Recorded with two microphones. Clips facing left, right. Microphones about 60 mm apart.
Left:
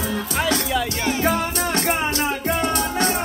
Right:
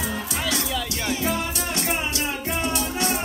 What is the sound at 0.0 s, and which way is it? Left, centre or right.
Music, left.